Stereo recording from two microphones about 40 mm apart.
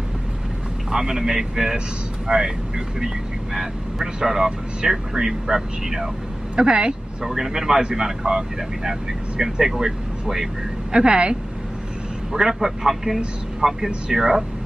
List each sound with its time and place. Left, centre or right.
0.9 s speech: centre
3.5 s speech: centre
6.5 s speech: right
7.2 s speech: centre
10.9 s speech: right
12.3 s speech: centre